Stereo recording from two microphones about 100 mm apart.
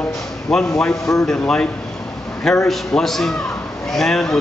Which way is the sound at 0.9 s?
35° left (ahead or behind).